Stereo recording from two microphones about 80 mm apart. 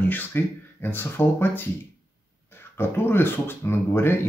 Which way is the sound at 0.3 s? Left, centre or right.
Left.